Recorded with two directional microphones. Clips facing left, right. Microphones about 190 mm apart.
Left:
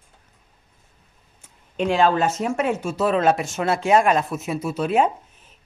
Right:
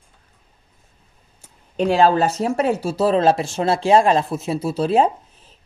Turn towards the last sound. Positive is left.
turn(degrees=-30)  # may be behind; listen again after turning